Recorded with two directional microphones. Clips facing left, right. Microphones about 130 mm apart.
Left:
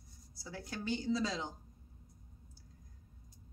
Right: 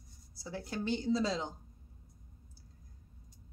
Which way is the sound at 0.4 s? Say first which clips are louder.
Right 5 dB; 30° right (ahead or behind).